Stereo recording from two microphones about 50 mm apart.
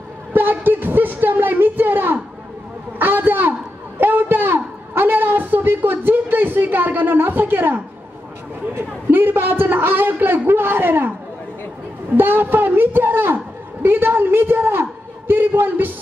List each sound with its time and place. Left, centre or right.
0.3 s a sound: right
8.7 s a man's voice: right
12.2 s a man's voice: right